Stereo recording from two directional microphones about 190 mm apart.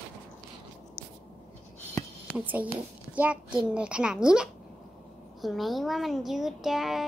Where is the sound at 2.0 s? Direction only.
5° right (ahead or behind).